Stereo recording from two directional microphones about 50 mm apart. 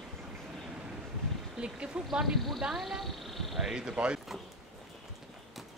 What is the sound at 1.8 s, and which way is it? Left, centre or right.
Speech, centre.